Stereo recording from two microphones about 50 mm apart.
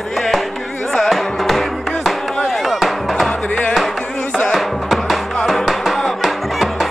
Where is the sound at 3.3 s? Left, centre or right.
Left.